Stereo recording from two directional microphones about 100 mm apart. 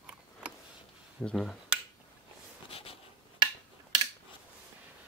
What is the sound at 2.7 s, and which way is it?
Writing, 75° left (ahead or behind).